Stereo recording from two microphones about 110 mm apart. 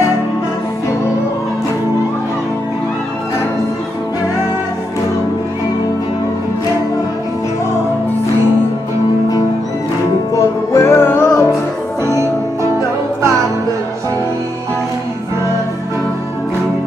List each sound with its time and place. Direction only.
10.7 s music: 25° left (ahead or behind)